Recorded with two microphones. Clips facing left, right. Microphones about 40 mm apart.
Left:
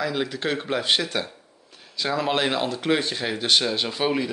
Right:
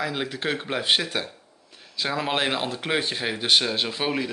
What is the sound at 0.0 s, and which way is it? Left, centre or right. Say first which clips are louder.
Speech: left 2 dB; centre.